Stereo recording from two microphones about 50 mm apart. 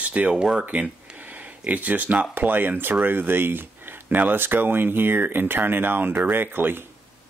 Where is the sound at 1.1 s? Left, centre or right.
Right.